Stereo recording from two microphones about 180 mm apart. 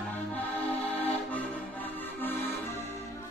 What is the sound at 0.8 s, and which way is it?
Music, 35° left (ahead or behind).